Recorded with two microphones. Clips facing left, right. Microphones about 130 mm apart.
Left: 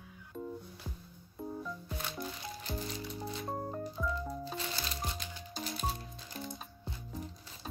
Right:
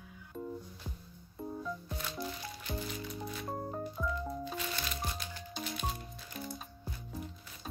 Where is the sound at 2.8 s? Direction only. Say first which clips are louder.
Even; 30° left (ahead or behind).